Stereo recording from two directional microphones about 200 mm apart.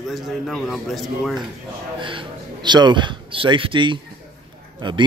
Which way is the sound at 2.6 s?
20° right (ahead or behind).